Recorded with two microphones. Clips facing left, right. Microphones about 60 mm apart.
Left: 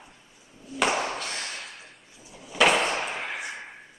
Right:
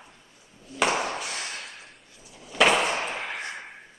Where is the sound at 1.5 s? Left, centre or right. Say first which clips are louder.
Even; centre.